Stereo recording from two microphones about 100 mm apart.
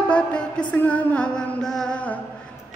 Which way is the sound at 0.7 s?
15° left (ahead or behind).